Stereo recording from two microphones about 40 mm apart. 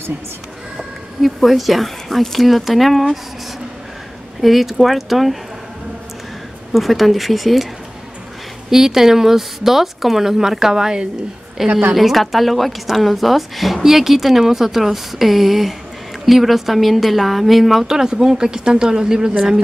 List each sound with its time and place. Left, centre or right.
0.7 s speech: centre
4.4 s speech: centre
6.7 s speech: centre
8.6 s a woman's voice: centre
17.8 s a woman's voice: centre